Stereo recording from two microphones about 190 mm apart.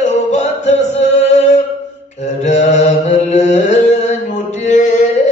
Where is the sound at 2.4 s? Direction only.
35° left (ahead or behind).